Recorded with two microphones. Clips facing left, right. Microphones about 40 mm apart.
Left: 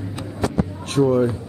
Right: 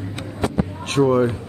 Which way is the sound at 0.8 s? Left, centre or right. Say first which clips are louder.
Right 1 dB; right.